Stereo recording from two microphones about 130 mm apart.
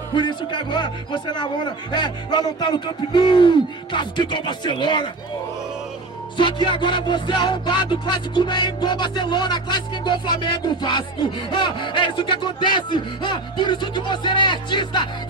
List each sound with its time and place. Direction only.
0.1 s music: 35° left (ahead or behind)
6.3 s music: 35° left (ahead or behind)